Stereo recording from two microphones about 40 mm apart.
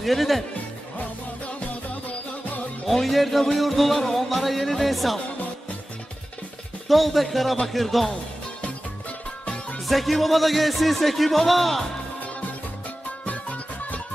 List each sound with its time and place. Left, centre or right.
0.0 s speech: centre
2.9 s speech: centre
6.9 s speech: centre
9.8 s speech: centre
13.2 s music: left